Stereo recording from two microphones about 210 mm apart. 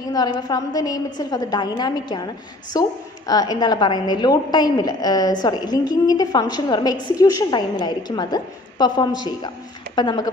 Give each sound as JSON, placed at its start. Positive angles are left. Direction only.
{"t": 0.1, "sound": "a woman's voice", "side_deg": 20}